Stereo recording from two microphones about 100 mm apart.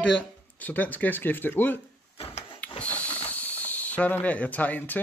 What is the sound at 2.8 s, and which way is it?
Snake, 15° left (ahead or behind).